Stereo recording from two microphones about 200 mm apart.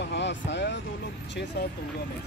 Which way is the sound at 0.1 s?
60° left (ahead or behind).